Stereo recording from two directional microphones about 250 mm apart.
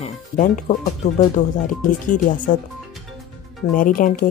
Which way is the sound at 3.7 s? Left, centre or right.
Left.